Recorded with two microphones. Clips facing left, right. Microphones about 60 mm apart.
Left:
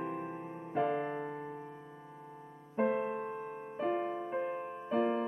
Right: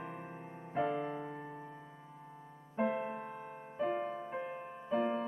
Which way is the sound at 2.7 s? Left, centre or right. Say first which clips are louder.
Left 3 dB; centre.